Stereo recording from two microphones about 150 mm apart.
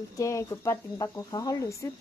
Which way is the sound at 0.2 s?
20° left (ahead or behind).